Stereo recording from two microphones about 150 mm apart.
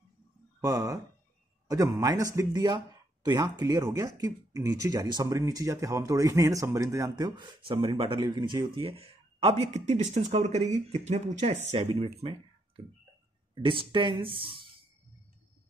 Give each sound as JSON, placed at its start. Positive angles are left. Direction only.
{"t": 0.6, "sound": "speech", "side_deg": -25}